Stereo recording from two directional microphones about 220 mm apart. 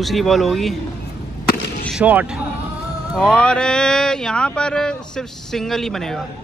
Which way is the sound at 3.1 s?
5° left (ahead or behind).